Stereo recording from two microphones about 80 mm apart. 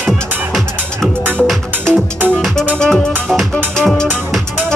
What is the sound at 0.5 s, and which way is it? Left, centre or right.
Music, centre.